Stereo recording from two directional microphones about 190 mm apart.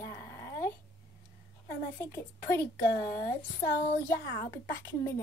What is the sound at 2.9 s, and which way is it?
Speech, 50° left (ahead or behind).